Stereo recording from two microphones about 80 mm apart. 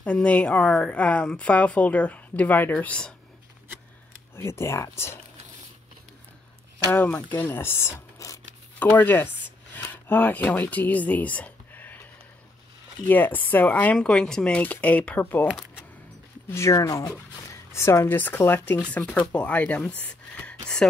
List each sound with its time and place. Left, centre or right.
0.0 s speech: centre
4.4 s speech: left
7.2 s speech: left
8.2 s speech: left
8.7 s speech: left
9.8 s a sound: left
10.5 s speech: left
13.0 s speech: left
13.9 s speech: centre
16.4 s speech: left; by 20.9 s centre